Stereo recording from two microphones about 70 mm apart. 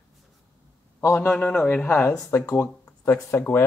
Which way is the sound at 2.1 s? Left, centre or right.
Left.